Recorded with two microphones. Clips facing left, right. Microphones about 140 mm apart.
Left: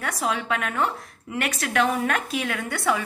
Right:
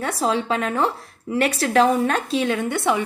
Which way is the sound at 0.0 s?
30° right (ahead or behind).